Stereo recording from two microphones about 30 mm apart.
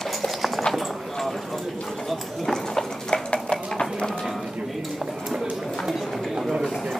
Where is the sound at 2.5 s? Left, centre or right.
Centre.